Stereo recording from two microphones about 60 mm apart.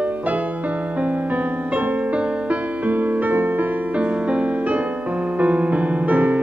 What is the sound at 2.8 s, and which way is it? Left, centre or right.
Music, right.